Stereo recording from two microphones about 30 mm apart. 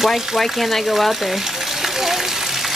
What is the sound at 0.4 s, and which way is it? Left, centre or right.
Speech, centre.